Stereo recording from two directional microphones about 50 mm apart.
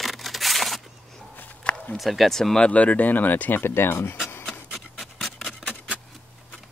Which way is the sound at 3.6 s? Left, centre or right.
Left.